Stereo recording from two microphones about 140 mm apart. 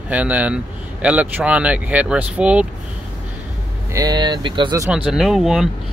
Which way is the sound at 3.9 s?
30° right (ahead or behind).